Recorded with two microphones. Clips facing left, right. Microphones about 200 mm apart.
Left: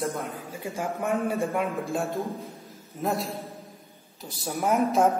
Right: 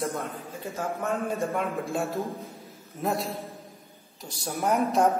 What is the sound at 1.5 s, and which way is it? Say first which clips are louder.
A woman's voice: left 1 dB; centre (ahead or behind).